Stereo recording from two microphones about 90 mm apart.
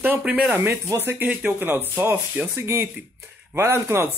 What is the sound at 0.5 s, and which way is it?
Speech, 25° right (ahead or behind).